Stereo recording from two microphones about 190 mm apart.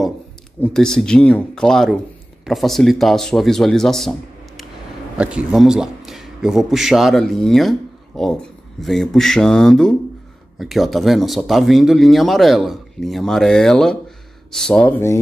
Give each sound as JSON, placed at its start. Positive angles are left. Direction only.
{"t": 0.6, "sound": "a man's voice", "side_deg": 5}